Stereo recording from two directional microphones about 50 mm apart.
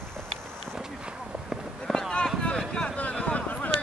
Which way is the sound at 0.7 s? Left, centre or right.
Centre.